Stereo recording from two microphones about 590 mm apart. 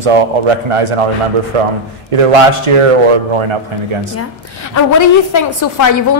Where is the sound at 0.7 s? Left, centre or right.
Right.